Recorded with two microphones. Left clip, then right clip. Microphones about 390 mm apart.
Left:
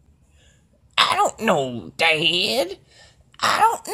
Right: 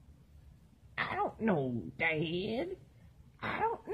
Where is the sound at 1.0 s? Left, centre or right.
Centre.